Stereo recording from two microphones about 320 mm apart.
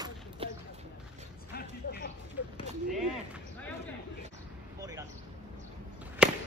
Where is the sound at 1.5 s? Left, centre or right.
Left.